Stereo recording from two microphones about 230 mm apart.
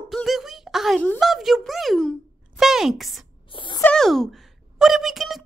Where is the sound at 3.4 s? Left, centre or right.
Left.